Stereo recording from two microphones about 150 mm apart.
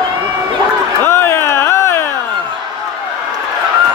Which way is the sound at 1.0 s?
15° left (ahead or behind).